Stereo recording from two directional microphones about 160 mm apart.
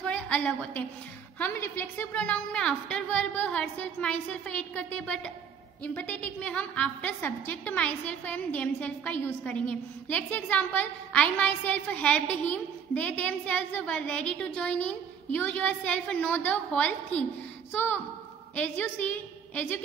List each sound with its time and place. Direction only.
0.0 s a woman's voice: 5° left (ahead or behind)